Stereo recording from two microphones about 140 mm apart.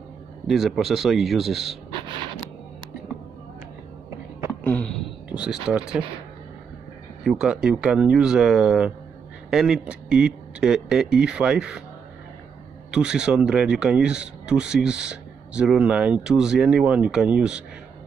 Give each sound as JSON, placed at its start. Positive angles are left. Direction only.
{"t": 0.5, "sound": "speech", "side_deg": 0}
{"t": 1.9, "sound": "a sound", "side_deg": -35}
{"t": 4.6, "sound": "a sound", "side_deg": 10}
{"t": 5.3, "sound": "speech", "side_deg": -5}
{"t": 7.2, "sound": "speech", "side_deg": -5}
{"t": 12.9, "sound": "speech", "side_deg": -5}